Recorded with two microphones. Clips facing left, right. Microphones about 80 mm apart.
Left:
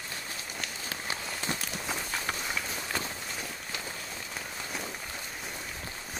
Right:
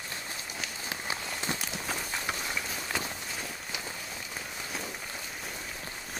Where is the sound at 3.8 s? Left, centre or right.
Centre.